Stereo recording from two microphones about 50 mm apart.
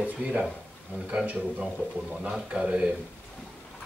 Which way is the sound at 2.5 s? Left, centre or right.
Right.